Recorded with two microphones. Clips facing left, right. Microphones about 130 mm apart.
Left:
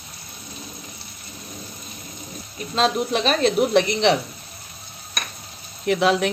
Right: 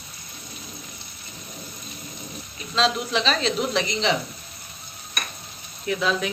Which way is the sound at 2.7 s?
50° left (ahead or behind).